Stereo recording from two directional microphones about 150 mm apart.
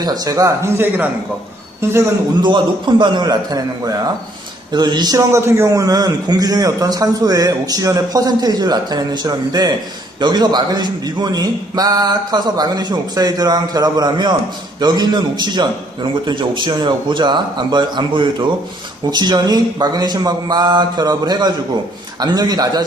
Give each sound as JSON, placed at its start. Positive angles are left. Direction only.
{"t": 0.0, "sound": "a man's voice", "side_deg": -25}
{"t": 2.4, "sound": "a man's voice", "side_deg": -30}